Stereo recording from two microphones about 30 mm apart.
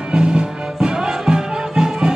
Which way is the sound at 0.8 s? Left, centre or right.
Right.